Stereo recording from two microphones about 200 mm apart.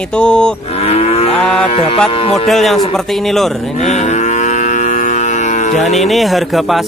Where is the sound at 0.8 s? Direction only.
30° left (ahead or behind).